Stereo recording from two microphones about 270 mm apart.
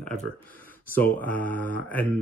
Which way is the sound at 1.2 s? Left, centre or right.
Centre.